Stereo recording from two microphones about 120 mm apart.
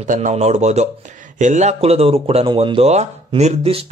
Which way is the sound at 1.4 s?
80° right.